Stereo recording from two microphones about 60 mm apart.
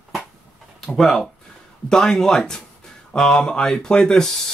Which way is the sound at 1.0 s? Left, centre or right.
Centre.